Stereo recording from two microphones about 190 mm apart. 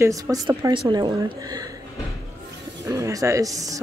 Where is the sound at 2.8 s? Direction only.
15° right (ahead or behind).